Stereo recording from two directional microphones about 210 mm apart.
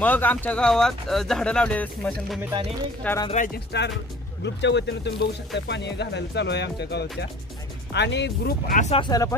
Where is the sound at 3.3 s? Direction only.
40° left (ahead or behind).